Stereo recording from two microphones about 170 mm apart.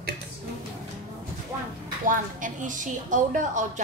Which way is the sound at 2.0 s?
50° right (ahead or behind).